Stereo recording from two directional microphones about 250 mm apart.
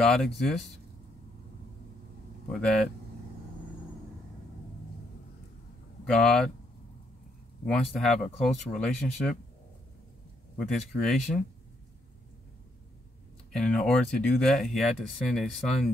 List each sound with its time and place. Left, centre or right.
0.0 s speech: centre
2.5 s speech: centre
6.0 s speech: centre
7.6 s speech: centre
8.2 s speech: left
9.0 s speech: centre
10.6 s speech: centre
13.5 s speech: centre